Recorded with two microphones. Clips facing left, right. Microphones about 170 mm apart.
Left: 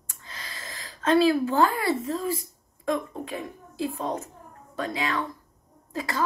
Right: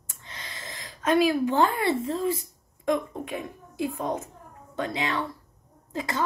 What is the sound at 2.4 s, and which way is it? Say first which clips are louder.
A woman's voice: even; 20° right (ahead or behind).